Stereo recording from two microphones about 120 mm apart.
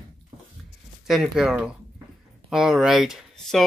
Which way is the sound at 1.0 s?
5° right (ahead or behind).